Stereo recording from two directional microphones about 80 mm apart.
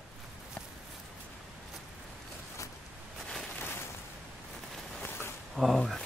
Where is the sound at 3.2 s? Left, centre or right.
Centre.